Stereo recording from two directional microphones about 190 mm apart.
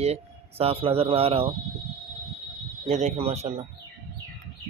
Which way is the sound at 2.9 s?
35° right (ahead or behind).